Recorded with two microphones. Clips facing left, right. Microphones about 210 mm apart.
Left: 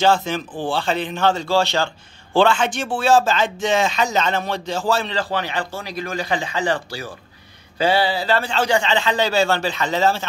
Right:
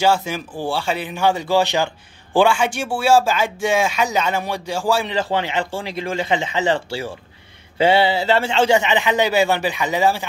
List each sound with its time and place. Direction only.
0.0 s speech: 10° right (ahead or behind)